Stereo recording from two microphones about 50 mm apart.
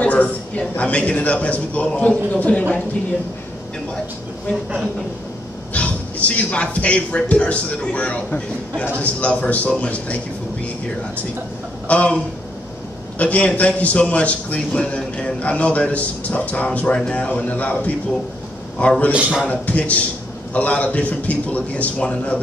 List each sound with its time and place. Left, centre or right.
0.0 s a man's voice: left
5.7 s a man's voice: left
11.9 s a man's voice: left
13.2 s a man's voice: left
17.3 s a man's voice: left